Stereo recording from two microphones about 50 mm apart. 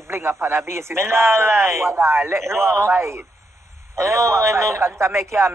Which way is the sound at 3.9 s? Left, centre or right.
Right.